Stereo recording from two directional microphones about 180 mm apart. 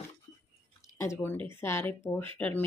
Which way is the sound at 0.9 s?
15° left (ahead or behind).